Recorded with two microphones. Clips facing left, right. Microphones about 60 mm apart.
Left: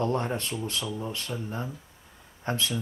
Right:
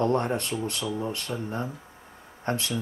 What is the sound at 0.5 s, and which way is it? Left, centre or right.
Speech, centre.